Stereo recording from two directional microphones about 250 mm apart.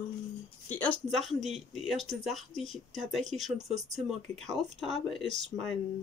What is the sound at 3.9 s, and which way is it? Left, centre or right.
Speech, right.